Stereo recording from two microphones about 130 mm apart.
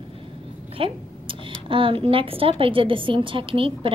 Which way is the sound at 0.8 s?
45° right (ahead or behind).